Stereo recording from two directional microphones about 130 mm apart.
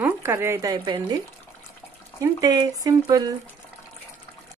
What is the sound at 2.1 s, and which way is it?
Speech, 30° right (ahead or behind).